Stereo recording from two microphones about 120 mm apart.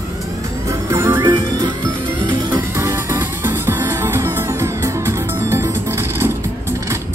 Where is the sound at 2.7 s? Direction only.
25° right (ahead or behind).